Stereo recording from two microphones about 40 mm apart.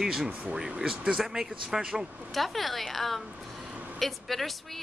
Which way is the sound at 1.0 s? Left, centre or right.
Centre.